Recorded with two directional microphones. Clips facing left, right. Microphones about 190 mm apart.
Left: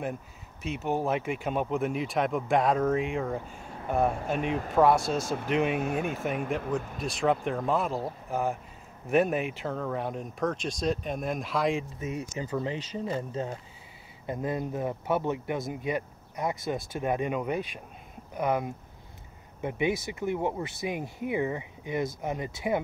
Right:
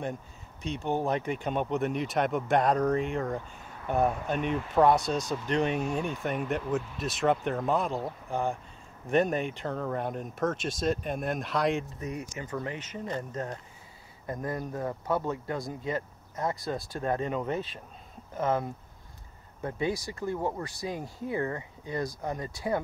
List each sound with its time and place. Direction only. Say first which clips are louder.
0.0 s speech: left 1 dB; 5° left (ahead or behind)
5.8 s speech: left 1 dB; 55° left (ahead or behind)
7.0 s speech: left 1 dB; centre (ahead or behind)
12.0 s speech: left 2 dB; 25° left (ahead or behind)
13.0 s speech: left 1 dB; 10° left (ahead or behind)
14.2 s speech: left 3 dB; 20° left (ahead or behind)